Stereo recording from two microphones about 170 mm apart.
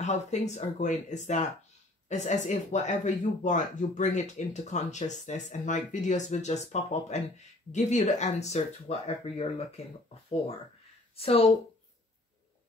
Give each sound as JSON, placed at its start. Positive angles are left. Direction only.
{"t": 0.0, "sound": "speech", "side_deg": 40}
{"t": 11.1, "sound": "a woman's voice", "side_deg": 35}